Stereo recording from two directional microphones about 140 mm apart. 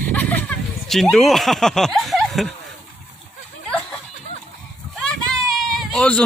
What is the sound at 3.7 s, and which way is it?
Snicker, 5° left (ahead or behind).